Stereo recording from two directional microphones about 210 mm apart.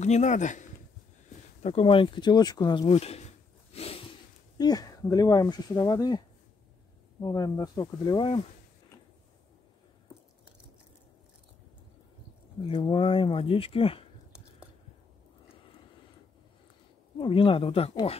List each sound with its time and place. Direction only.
0.0 s speech: 35° left (ahead or behind)
2.9 s speech: 30° left (ahead or behind)
3.7 s a sound: 30° left (ahead or behind)
4.6 s speech: 20° left (ahead or behind)
12.6 s speech: 25° left (ahead or behind)
17.2 s speech: 25° left (ahead or behind)